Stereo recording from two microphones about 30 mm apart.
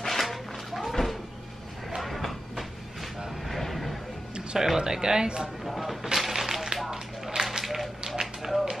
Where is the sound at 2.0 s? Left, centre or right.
Centre.